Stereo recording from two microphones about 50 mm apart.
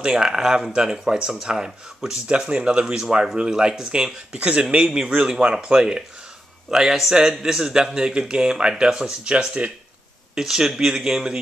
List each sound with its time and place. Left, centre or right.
0.0 s speech: centre
10.3 s speech: centre